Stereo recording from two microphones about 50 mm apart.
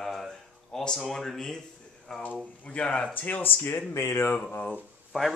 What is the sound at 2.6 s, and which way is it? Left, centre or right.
Speech, left.